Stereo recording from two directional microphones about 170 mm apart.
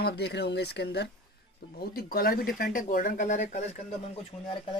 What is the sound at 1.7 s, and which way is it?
Speech, 65° left (ahead or behind).